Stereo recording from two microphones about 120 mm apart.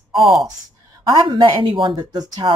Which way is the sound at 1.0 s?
40° right (ahead or behind).